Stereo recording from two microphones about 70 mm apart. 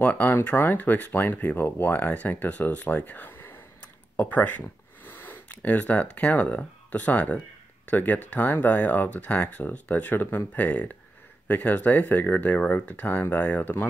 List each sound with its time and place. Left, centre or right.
0.0 s speech: left